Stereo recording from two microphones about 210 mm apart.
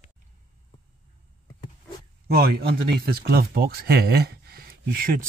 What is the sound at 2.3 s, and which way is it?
Speech, 45° right (ahead or behind).